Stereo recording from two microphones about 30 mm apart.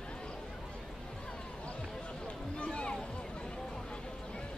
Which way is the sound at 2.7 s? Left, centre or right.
Left.